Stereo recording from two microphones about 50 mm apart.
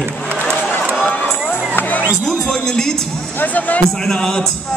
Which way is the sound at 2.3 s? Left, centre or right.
Centre.